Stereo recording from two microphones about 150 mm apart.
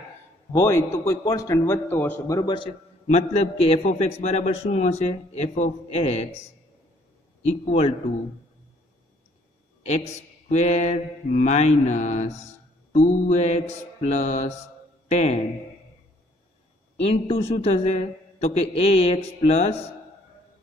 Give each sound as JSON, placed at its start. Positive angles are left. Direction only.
{"t": 0.5, "sound": "a man's voice", "side_deg": 20}
{"t": 3.1, "sound": "a man's voice", "side_deg": 45}
{"t": 7.4, "sound": "a man's voice", "side_deg": 45}
{"t": 10.5, "sound": "a man's voice", "side_deg": 50}
{"t": 17.0, "sound": "a man's voice", "side_deg": 40}